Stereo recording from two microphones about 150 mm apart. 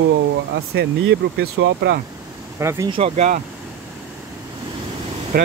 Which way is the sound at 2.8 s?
40° right (ahead or behind).